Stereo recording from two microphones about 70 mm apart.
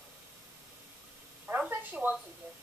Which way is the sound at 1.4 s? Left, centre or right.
Right.